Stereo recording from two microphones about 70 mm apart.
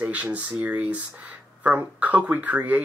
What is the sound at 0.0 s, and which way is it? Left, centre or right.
Speech, right.